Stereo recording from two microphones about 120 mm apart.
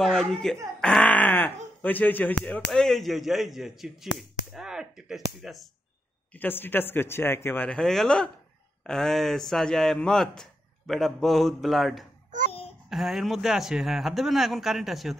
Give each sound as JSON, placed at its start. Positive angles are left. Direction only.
{"t": 0.0, "sound": "a man's voice", "side_deg": 5}
{"t": 2.7, "sound": "a man's voice", "side_deg": 0}
{"t": 6.3, "sound": "a man's voice", "side_deg": 15}